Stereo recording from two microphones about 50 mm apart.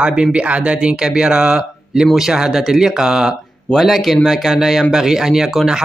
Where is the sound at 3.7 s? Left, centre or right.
Centre.